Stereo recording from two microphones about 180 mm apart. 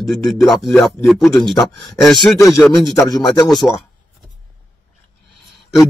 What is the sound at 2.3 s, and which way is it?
Speech, 15° left (ahead or behind).